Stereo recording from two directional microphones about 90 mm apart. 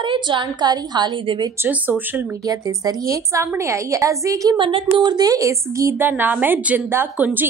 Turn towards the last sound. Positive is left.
turn(degrees=-20)  # may be behind; listen again after turning